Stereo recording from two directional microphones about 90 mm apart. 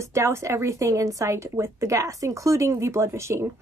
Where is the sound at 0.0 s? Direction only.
30° right (ahead or behind).